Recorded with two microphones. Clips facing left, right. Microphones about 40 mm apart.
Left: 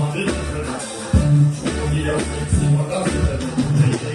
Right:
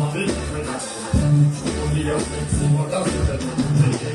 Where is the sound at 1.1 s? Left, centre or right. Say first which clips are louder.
Left 1 dB; left.